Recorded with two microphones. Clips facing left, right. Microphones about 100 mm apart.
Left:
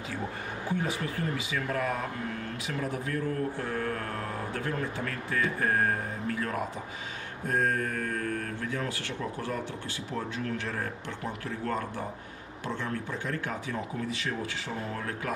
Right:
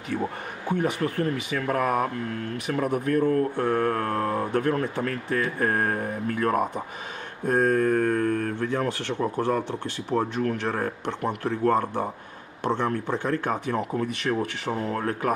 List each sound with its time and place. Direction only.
0.7 s speech: 65° right (ahead or behind); by 9.3 s 40° right (ahead or behind)
10.0 s speech: 60° right (ahead or behind)